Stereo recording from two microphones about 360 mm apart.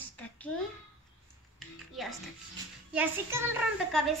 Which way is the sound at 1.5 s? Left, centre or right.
Centre.